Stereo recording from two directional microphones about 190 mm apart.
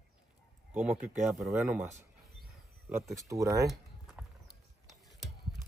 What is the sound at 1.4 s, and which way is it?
Speech, centre (ahead or behind).